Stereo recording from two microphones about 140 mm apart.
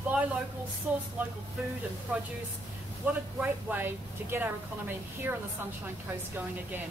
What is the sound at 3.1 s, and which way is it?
A woman's voice, 10° right (ahead or behind).